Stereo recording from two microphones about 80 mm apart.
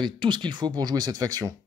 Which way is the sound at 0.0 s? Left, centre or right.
Right.